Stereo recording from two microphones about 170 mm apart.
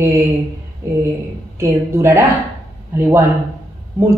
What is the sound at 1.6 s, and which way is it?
Speech, 15° right (ahead or behind).